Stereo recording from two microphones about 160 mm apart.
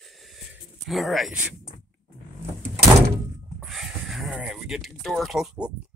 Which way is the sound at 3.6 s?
Centre (ahead or behind).